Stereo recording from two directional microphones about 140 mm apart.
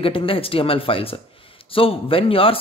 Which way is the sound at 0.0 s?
40° left (ahead or behind).